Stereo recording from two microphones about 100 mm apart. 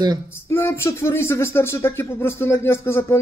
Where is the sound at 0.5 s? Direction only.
25° left (ahead or behind).